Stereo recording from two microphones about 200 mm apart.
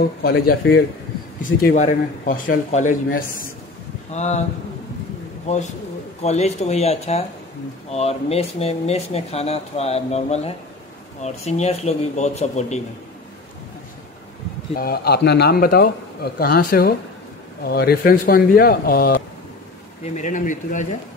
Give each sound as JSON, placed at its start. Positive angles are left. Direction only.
{"t": 0.2, "sound": "a man's voice", "side_deg": 50}
{"t": 1.8, "sound": "a man's voice", "side_deg": 40}
{"t": 4.1, "sound": "speech", "side_deg": 35}
{"t": 6.2, "sound": "speech", "side_deg": 35}
{"t": 14.8, "sound": "a man's voice", "side_deg": 50}